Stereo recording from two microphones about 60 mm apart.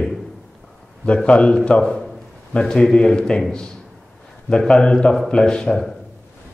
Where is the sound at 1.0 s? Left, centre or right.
Centre.